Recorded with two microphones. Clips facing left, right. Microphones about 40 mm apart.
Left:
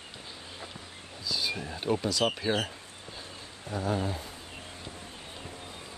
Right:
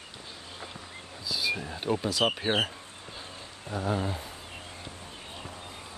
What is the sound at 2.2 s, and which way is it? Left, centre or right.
Speech, right.